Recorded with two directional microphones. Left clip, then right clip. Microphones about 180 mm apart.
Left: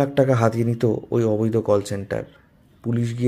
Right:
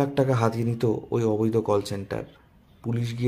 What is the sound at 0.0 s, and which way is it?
A man's voice, 20° left (ahead or behind).